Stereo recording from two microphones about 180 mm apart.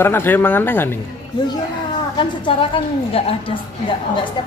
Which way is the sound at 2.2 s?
30° left (ahead or behind).